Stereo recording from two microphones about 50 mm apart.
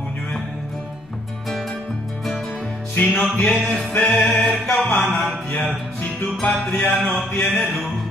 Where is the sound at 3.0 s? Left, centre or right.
Left.